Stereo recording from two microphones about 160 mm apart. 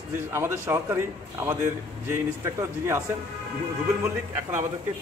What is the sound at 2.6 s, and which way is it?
Speech, 15° right (ahead or behind).